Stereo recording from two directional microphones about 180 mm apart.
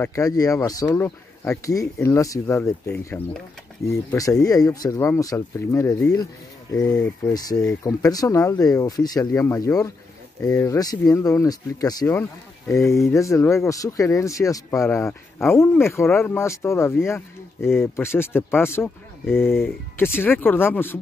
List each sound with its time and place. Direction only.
0.0 s speech: 15° left (ahead or behind)